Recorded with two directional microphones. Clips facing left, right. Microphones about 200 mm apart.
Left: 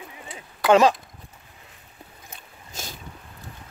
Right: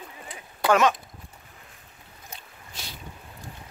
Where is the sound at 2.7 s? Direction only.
45° left (ahead or behind).